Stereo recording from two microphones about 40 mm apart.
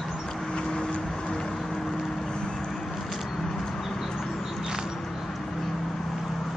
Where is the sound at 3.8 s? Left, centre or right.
Centre.